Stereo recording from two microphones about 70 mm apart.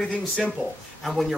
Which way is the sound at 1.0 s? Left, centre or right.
Centre.